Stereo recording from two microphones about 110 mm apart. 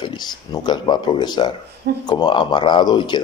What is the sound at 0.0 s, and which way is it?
Speech, 40° left (ahead or behind).